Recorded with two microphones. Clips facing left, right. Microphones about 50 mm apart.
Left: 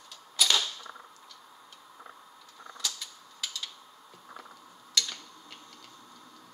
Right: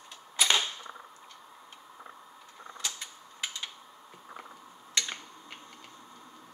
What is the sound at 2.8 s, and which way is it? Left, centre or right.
Typewriter, right.